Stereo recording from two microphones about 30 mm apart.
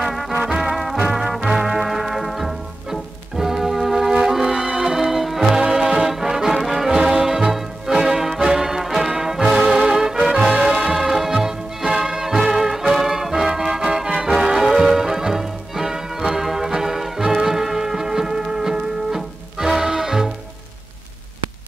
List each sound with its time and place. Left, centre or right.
0.3 s music: right
1.1 s music: centre
4.6 s music: right
4.9 s music: centre
5.6 s music: centre
6.9 s music: right
14.5 s music: centre